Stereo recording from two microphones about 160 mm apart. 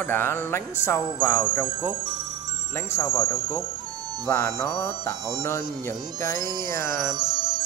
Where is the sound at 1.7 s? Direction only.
20° right (ahead or behind).